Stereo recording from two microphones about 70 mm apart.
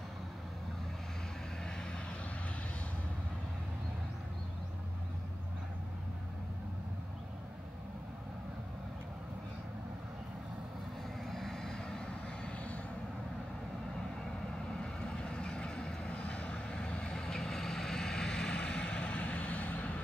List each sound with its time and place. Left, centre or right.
11.2 s vehicle: centre
12.4 s vehicle: centre
14.7 s vehicle: centre